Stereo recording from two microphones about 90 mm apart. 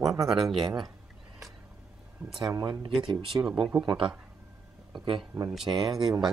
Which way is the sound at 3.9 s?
70° right (ahead or behind).